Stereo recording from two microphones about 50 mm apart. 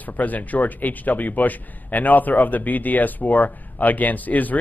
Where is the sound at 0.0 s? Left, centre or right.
Left.